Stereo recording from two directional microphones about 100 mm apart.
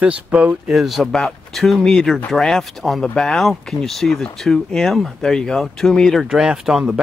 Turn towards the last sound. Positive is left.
turn(degrees=-5)  # may be behind; listen again after turning